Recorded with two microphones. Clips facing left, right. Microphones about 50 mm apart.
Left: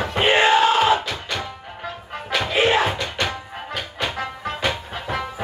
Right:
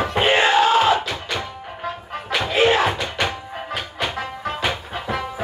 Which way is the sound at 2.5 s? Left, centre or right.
Left.